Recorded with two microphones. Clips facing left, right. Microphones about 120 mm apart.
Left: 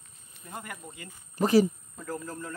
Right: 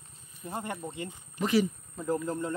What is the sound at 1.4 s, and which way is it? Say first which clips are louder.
Speech: left 4 dB; 40° left (ahead or behind).